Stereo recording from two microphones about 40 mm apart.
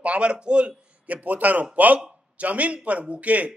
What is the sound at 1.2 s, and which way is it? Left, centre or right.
A man's voice, right.